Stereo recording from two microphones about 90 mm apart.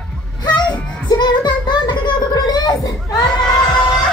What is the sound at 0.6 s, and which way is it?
Child singing, 55° left (ahead or behind).